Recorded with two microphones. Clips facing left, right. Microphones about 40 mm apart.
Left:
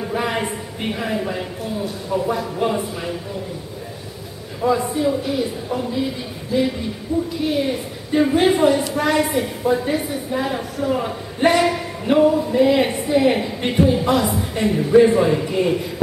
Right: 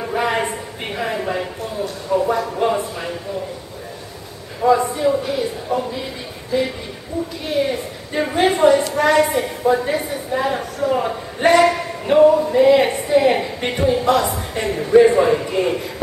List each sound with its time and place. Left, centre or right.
0.0 s a sound: centre
2.1 s a woman's voice: centre
4.6 s a woman's voice: centre
7.1 s a woman's voice: centre
7.4 s a woman's voice: centre
12.4 s a woman's voice: centre